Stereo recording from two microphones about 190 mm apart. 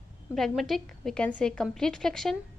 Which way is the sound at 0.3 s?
Centre (ahead or behind).